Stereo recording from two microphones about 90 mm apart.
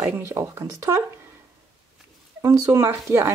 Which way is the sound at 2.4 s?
35° right (ahead or behind).